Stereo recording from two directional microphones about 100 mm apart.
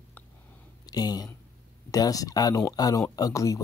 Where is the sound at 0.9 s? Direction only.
40° left (ahead or behind).